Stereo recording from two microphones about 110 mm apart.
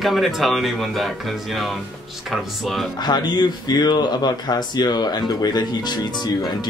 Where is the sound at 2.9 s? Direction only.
40° left (ahead or behind).